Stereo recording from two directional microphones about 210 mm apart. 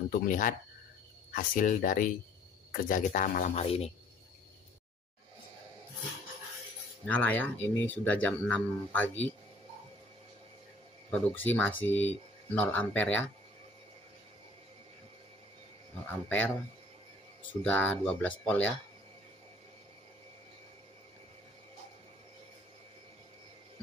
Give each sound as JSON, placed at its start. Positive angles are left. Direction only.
{"t": 0.1, "sound": "speech", "side_deg": 40}
{"t": 7.1, "sound": "speech", "side_deg": 10}
{"t": 11.1, "sound": "speech", "side_deg": 5}
{"t": 16.1, "sound": "speech", "side_deg": 10}